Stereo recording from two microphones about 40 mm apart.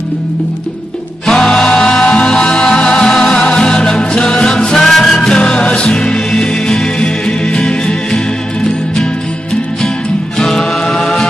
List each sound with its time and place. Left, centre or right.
1.2 s music: centre
5.2 s music: left
10.4 s chant: centre